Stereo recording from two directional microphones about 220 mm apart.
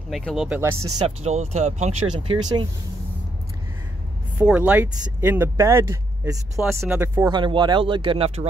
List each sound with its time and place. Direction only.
0.1 s speech: centre (ahead or behind)
1.0 s speech: 30° right (ahead or behind)
4.4 s speech: 5° right (ahead or behind); by 8.5 s 25° right (ahead or behind)